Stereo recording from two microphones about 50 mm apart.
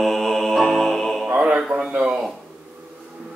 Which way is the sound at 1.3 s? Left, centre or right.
Right.